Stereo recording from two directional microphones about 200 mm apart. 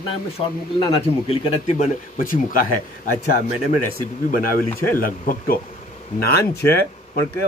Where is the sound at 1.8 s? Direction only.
45° left (ahead or behind).